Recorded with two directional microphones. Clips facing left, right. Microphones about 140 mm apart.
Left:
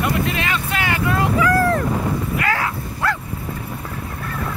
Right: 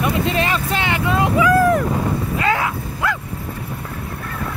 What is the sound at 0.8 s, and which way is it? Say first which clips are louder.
Speech: even; 20° right (ahead or behind).